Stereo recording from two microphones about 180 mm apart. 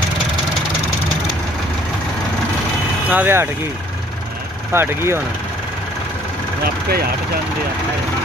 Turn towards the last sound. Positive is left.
turn(degrees=-60)  # may be behind; listen again after turning